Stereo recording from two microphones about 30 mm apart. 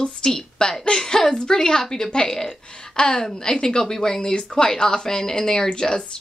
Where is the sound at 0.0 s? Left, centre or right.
Left.